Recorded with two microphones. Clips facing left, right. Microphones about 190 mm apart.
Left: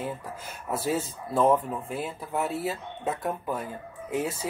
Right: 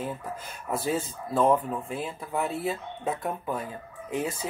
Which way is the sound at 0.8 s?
5° left (ahead or behind).